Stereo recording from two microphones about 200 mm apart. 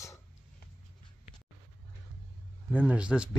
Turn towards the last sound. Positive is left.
turn(degrees=-5)  # may be behind; listen again after turning